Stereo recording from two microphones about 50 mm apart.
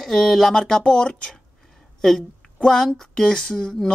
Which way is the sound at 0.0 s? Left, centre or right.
Centre.